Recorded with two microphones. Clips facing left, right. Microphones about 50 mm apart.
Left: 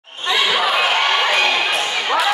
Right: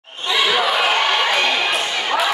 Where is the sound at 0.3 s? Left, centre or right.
Centre.